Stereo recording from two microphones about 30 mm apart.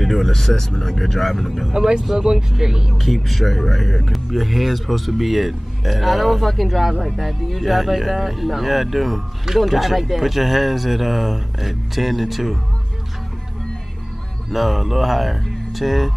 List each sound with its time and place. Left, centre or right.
0.0 s speech: centre
1.7 s speech: right
2.3 s speech: centre
2.7 s speech: centre
3.0 s speech: centre
14.5 s speech: centre